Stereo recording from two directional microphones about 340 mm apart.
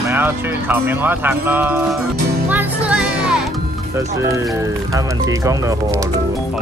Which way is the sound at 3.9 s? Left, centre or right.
Centre.